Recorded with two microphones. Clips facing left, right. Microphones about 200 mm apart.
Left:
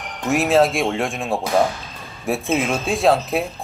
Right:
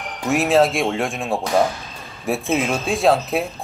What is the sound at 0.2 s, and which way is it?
Speech, centre (ahead or behind).